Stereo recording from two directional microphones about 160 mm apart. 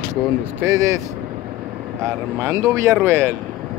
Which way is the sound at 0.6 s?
20° right (ahead or behind).